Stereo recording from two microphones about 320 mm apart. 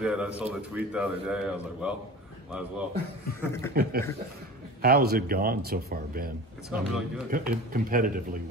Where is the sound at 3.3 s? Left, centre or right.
Centre.